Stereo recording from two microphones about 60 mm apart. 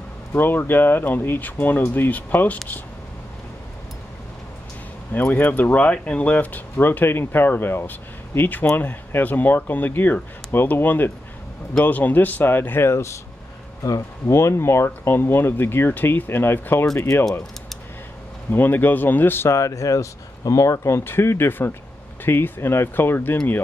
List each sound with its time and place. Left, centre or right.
0.3 s speech: left
5.1 s speech: left
14.2 s speech: left
17.3 s speech: centre
18.5 s speech: left
19.5 s speech: left
21.0 s speech: left